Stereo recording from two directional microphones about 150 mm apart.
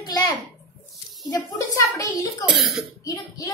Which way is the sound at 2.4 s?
Centre (ahead or behind).